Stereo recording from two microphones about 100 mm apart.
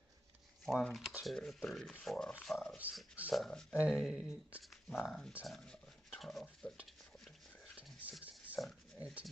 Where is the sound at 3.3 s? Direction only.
5° left (ahead or behind).